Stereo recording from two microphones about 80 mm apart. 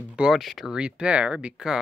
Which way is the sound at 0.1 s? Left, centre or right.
Centre.